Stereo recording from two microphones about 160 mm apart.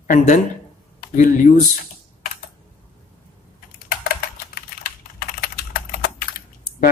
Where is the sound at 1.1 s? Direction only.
55° left (ahead or behind).